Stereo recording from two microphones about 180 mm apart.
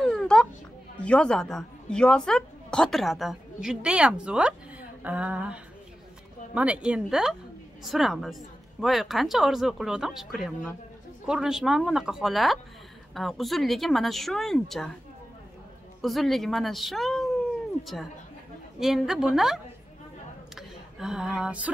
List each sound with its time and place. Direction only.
0.0 s a sound: 5° left (ahead or behind)
0.9 s a woman's voice: 5° left (ahead or behind)
16.0 s a woman's voice: centre (ahead or behind)
17.8 s speech: 40° left (ahead or behind)
18.8 s a woman's voice: centre (ahead or behind)